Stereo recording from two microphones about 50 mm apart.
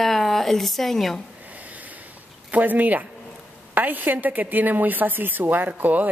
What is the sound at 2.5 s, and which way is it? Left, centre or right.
A woman's voice, right.